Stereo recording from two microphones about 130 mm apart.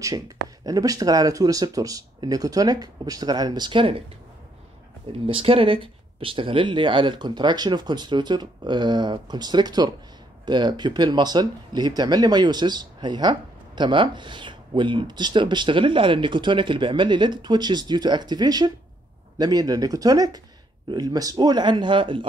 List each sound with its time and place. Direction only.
0.7 s speech: 30° right (ahead or behind)
5.2 s speech: 45° right (ahead or behind)